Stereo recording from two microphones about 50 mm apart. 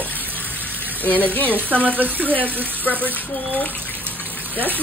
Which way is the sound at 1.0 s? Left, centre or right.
Left.